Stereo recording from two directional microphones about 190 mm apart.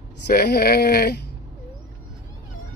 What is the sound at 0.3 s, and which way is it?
Speech, 55° left (ahead or behind).